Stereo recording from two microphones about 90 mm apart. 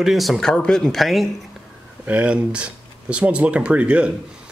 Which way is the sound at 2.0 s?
15° right (ahead or behind).